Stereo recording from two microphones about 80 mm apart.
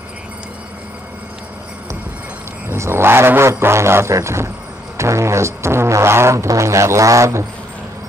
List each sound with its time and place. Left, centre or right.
2.7 s speech: right